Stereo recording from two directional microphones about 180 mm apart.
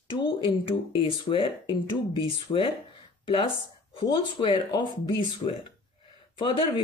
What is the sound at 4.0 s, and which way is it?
Speech, 30° left (ahead or behind).